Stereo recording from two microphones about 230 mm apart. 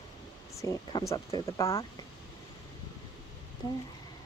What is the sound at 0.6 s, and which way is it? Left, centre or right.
Speech, centre.